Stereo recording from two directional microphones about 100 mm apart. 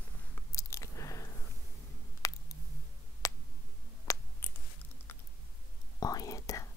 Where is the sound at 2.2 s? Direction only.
35° left (ahead or behind).